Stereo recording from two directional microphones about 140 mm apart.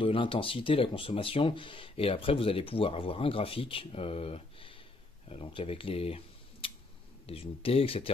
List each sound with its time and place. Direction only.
0.0 s speech: 40° left (ahead or behind)